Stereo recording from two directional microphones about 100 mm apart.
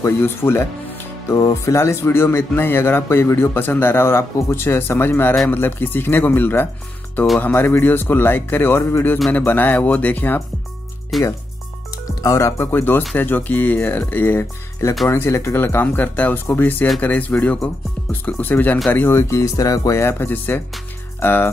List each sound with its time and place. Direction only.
0.0 s speech: 25° left (ahead or behind)
11.1 s speech: centre (ahead or behind)
11.9 s speech: 35° left (ahead or behind)